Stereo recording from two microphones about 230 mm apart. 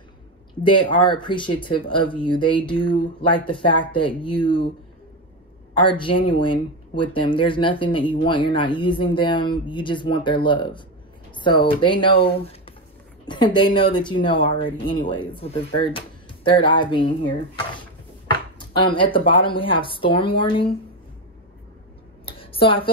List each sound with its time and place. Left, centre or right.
0.7 s speech: left
5.8 s speech: left
18.6 s speech: left
22.2 s a sound: left